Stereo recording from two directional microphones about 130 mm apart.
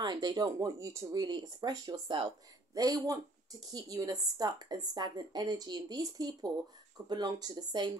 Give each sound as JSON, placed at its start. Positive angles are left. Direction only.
{"t": 0.0, "sound": "speech", "side_deg": -35}
{"t": 1.2, "sound": "a woman's voice", "side_deg": -35}
{"t": 2.7, "sound": "a woman's voice", "side_deg": -30}